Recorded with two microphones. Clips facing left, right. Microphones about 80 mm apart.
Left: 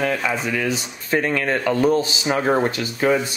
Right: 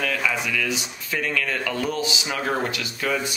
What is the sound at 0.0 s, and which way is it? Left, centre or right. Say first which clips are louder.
Speech: left 3 dB; left.